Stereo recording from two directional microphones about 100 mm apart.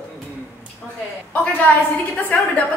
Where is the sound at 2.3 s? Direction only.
15° left (ahead or behind).